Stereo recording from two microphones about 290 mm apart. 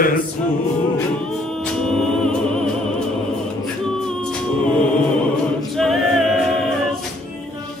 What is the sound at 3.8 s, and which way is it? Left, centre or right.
A capella, centre.